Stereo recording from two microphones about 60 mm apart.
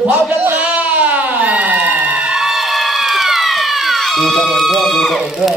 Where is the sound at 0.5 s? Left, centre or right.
Right.